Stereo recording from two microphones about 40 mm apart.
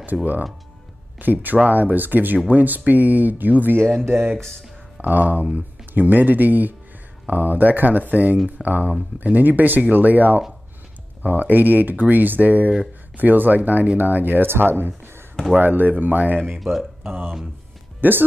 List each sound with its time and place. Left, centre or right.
0.0 s speech: right
4.0 s speech: right
4.9 s speech: right
14.5 s speech: right
15.5 s speech: right
16.5 s speech: centre
18.0 s speech: right